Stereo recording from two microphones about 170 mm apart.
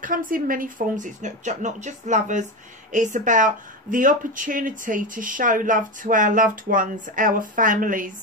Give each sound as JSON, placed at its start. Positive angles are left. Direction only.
{"t": 0.0, "sound": "speech", "side_deg": -55}